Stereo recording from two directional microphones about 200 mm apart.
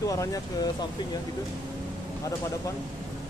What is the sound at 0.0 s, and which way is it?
Speech, 15° left (ahead or behind).